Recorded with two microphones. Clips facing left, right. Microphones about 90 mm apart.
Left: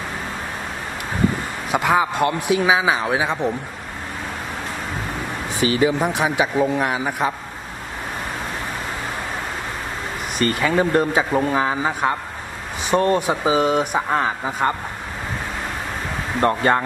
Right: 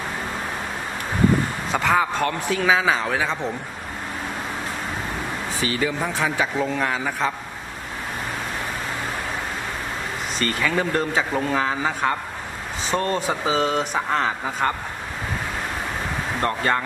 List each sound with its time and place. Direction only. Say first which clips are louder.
1.7 s a man's voice: left 3 dB; 10° left (ahead or behind)
5.8 s a man's voice: left 5 dB; 20° left (ahead or behind)
10.4 s a man's voice: left 5 dB; 15° left (ahead or behind)
16.3 s speech: left 5 dB; 20° left (ahead or behind)